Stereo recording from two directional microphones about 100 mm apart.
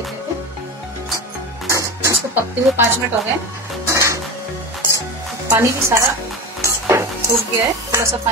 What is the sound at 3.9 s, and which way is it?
Music, 30° right (ahead or behind).